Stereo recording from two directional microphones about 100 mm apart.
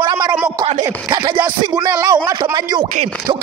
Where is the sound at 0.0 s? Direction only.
50° right (ahead or behind).